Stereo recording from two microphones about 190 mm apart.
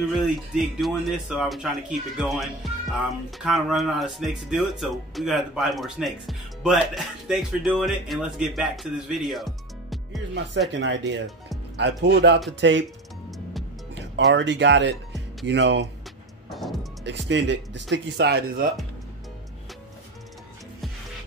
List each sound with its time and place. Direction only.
0.1 s speech: centre (ahead or behind)
10.7 s speech: 70° right (ahead or behind)
12.5 s speech: 75° right (ahead or behind)
14.3 s speech: 75° right (ahead or behind)
17.0 s speech: 70° right (ahead or behind)